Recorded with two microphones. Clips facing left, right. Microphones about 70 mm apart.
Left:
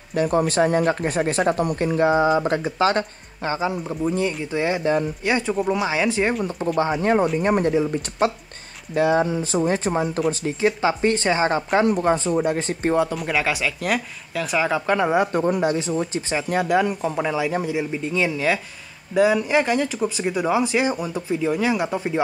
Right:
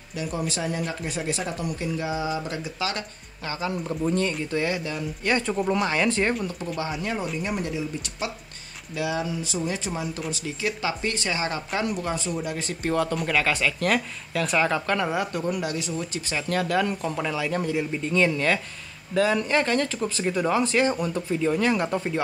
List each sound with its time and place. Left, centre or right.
0.1 s speech: left
3.7 s speech: centre
4.6 s speech: left
5.2 s speech: centre
6.8 s speech: left
13.1 s speech: centre
15.0 s speech: left